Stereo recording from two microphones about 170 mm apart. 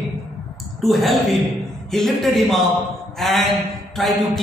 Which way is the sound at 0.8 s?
Centre (ahead or behind).